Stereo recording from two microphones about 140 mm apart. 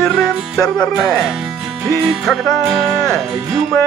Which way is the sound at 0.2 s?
5° right (ahead or behind).